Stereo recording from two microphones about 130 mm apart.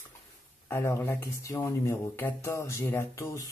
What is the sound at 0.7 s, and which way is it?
Speech, 20° left (ahead or behind).